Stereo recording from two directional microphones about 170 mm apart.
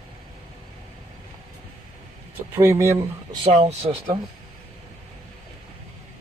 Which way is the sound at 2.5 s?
15° right (ahead or behind).